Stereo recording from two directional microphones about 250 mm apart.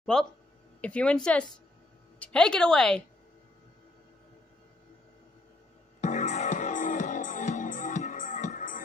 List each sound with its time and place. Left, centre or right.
0.0 s speech: centre
5.9 s music: left